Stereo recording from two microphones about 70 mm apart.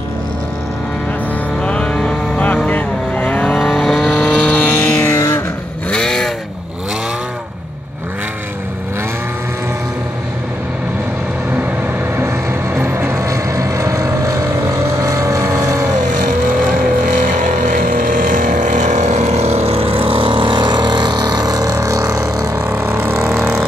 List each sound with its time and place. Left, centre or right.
1.6 s vehicle: centre
3.5 s vehicle: centre
4.8 s music: left
5.9 s vehicle: centre
12.3 s vehicle: right
20.5 s vehicle: right
22.6 s a sound: right